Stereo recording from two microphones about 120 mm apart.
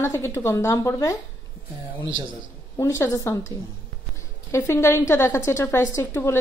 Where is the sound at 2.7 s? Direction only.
25° left (ahead or behind).